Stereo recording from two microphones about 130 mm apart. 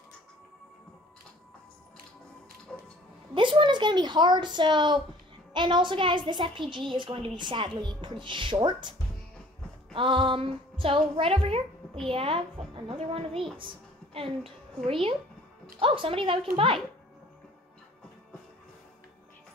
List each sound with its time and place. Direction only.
2.7 s music: 5° left (ahead or behind)
3.3 s a woman's voice: 40° right (ahead or behind)
9.9 s a woman's voice: 40° right (ahead or behind)